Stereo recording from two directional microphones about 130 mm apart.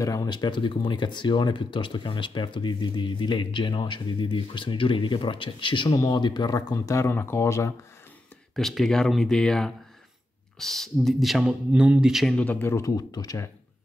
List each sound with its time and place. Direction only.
0.0 s speech: 30° left (ahead or behind)
5.9 s speech: 25° left (ahead or behind)
8.5 s speech: 5° left (ahead or behind); by 13.5 s 30° left (ahead or behind)